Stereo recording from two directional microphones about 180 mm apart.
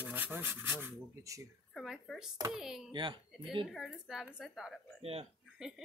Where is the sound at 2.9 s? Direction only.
25° right (ahead or behind).